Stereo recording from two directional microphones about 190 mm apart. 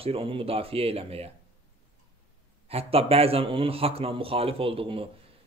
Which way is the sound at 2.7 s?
30° right (ahead or behind).